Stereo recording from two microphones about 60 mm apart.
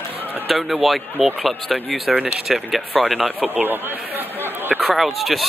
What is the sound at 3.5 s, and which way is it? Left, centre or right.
Speech, right.